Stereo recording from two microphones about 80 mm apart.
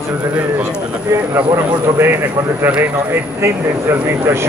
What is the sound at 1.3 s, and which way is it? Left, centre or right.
Speech, right.